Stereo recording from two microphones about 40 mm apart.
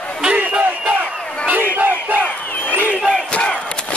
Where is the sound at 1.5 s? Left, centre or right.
Right.